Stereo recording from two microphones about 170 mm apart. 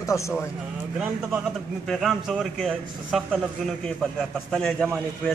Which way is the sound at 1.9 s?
Centre (ahead or behind).